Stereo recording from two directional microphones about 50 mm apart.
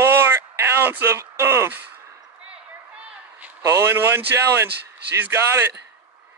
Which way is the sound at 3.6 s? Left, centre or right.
Right.